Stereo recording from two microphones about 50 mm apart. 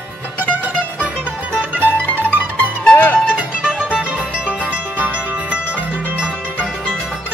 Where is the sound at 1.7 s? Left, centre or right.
Right.